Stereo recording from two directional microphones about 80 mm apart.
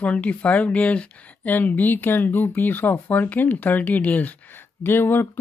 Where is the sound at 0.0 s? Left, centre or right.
Centre.